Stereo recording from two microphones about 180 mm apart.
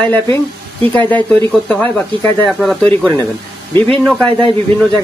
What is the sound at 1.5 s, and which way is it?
A man's voice, 5° left (ahead or behind).